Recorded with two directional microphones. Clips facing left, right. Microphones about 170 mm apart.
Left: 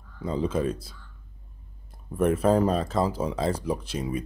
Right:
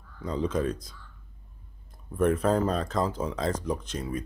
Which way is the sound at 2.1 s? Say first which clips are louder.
Left 2 dB; 5° left (ahead or behind).